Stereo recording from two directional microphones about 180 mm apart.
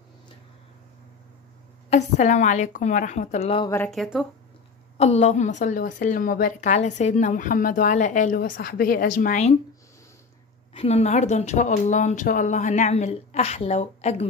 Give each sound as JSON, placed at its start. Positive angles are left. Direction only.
{"t": 1.9, "sound": "a woman's voice", "side_deg": 40}
{"t": 3.7, "sound": "speech", "side_deg": 5}
{"t": 4.9, "sound": "a woman's voice", "side_deg": 35}
{"t": 10.7, "sound": "a woman's voice", "side_deg": 35}